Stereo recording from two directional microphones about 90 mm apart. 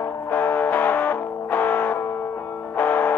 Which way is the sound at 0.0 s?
20° left (ahead or behind).